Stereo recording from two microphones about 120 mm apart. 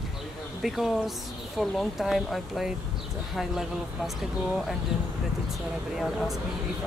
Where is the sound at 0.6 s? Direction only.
Centre (ahead or behind).